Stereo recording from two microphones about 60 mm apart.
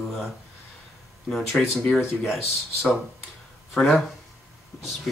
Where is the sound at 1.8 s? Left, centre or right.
Centre.